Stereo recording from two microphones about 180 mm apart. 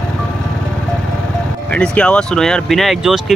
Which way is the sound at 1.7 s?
5° left (ahead or behind).